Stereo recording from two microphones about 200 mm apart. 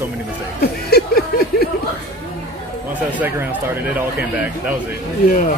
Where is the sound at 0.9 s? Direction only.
50° left (ahead or behind).